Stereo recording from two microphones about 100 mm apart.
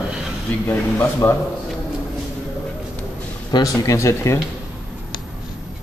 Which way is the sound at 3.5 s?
50° left (ahead or behind).